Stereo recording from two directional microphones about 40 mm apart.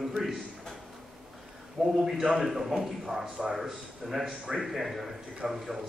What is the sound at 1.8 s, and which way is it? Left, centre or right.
A man's voice, centre.